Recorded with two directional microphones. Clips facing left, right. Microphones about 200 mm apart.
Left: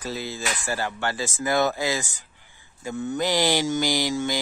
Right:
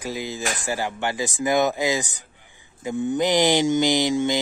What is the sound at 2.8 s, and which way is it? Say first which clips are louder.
Mantra: right 4 dB; 15° right (ahead or behind).